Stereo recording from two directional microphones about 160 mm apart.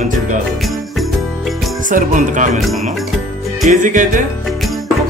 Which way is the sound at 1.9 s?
55° right (ahead or behind).